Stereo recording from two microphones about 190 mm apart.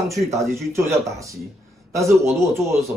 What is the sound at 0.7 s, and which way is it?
Speech, 15° right (ahead or behind).